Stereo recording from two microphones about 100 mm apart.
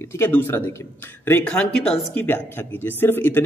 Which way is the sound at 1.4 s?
10° left (ahead or behind).